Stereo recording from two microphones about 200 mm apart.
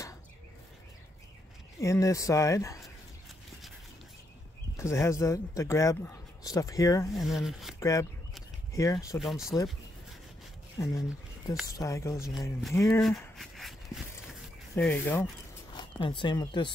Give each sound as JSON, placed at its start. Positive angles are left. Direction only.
{"t": 1.8, "sound": "a man's voice", "side_deg": 15}
{"t": 4.7, "sound": "a man's voice", "side_deg": 15}
{"t": 7.2, "sound": "speech", "side_deg": 0}
{"t": 7.8, "sound": "a man's voice", "side_deg": 15}
{"t": 10.8, "sound": "a man's voice", "side_deg": 15}
{"t": 13.0, "sound": "a sound", "side_deg": 0}
{"t": 14.8, "sound": "a man's voice", "side_deg": 10}
{"t": 15.7, "sound": "speech", "side_deg": 25}